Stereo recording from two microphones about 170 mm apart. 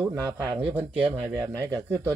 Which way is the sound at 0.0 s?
20° right (ahead or behind).